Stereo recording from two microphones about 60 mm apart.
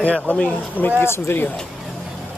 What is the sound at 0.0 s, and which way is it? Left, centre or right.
Speech, left.